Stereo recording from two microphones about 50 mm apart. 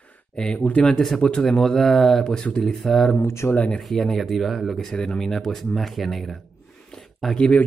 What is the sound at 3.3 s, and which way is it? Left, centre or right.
Speech, left.